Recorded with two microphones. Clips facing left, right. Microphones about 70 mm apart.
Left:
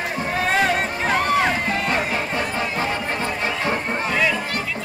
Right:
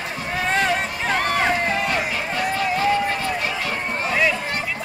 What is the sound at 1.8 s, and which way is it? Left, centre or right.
Run, left.